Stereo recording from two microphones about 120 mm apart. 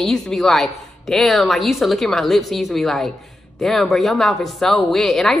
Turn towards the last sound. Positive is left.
turn(degrees=5)  # may be behind; listen again after turning